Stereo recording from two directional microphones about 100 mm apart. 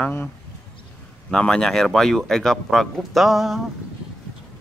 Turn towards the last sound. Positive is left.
turn(degrees=0)  # may be behind; listen again after turning